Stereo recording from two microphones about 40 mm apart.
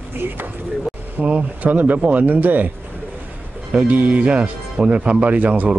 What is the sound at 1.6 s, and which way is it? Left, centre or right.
Speech, right.